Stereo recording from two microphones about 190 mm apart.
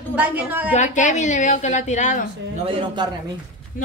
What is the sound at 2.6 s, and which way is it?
Speech, 30° right (ahead or behind).